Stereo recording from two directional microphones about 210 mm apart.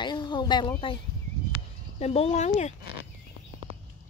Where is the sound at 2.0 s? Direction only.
30° left (ahead or behind).